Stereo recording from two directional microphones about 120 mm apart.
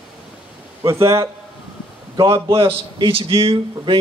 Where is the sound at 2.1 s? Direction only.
35° right (ahead or behind).